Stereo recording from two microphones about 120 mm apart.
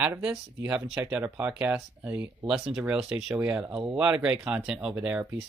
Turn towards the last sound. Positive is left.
turn(degrees=-10)  # may be behind; listen again after turning